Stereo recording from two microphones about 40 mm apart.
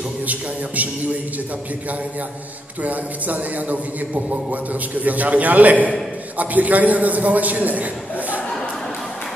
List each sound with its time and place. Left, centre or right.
0.3 s a man's voice: right
2.8 s a man's voice: right